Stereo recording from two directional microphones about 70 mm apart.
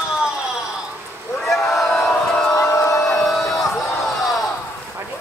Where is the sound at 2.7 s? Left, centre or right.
Left.